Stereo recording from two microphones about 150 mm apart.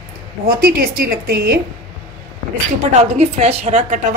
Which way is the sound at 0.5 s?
80° right.